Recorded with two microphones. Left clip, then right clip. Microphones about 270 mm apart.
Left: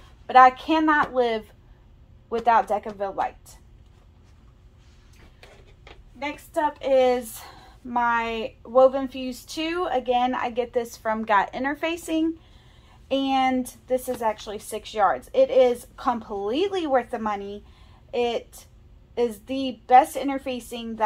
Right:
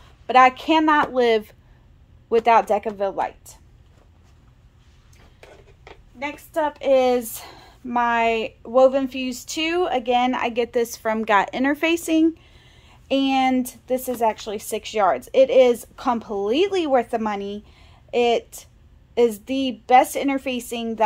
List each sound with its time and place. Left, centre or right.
0.3 s a woman's voice: right
6.5 s a woman's voice: right